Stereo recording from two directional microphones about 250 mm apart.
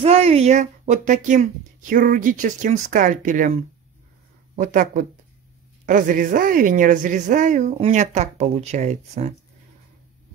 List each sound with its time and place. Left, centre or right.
0.0 s a woman's voice: right
4.6 s a woman's voice: right